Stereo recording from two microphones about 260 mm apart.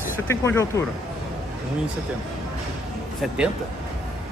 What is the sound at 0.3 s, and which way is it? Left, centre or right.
Speech, centre.